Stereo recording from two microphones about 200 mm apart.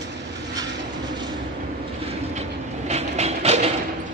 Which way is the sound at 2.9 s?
30° right (ahead or behind).